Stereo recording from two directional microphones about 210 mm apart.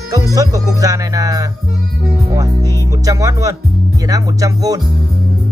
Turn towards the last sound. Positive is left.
turn(degrees=-15)  # may be behind; listen again after turning